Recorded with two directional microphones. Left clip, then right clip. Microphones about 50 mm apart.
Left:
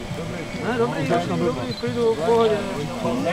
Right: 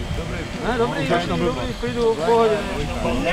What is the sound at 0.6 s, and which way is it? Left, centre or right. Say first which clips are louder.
Speech: right 2 dB; right.